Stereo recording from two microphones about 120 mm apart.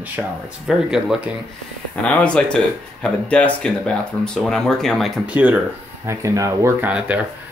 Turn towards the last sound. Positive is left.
turn(degrees=-10)  # may be behind; listen again after turning